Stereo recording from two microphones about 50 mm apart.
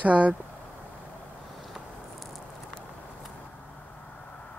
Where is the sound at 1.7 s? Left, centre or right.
Centre.